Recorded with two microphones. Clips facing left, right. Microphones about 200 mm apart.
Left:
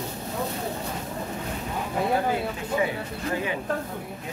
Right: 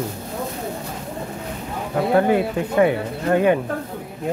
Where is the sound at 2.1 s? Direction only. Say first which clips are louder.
Right 12 dB; 65° right (ahead or behind).